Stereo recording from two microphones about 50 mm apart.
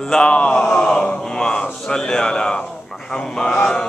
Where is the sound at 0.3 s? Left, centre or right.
Left.